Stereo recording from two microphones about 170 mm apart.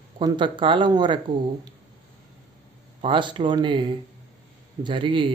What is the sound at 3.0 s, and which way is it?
A man's voice, 30° right (ahead or behind).